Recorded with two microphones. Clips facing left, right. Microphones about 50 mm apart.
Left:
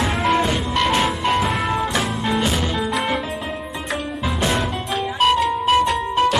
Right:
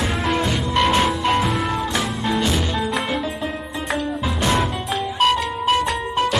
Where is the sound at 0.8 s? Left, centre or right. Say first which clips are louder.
Right 2 dB; centre.